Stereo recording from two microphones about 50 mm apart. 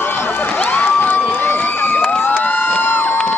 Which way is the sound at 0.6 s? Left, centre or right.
Left.